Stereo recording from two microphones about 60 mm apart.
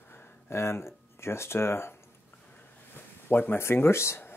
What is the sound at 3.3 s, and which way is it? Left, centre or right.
Speech, left.